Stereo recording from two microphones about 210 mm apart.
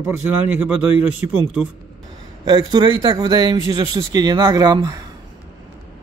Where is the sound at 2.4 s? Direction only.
20° right (ahead or behind).